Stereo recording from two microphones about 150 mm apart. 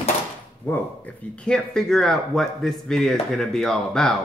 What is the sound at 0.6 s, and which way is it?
Speech, 10° left (ahead or behind).